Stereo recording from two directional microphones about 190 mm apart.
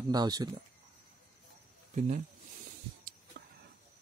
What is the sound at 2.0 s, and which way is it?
Speech, 40° right (ahead or behind).